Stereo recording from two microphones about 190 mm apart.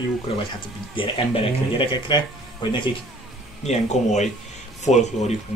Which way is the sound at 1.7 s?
25° left (ahead or behind).